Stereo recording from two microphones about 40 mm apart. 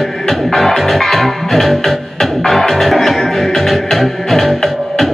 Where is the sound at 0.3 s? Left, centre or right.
Centre.